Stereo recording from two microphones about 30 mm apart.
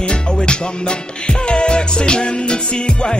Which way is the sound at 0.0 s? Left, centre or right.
Left.